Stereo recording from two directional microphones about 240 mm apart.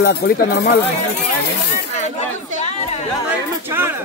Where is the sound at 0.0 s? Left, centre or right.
Left.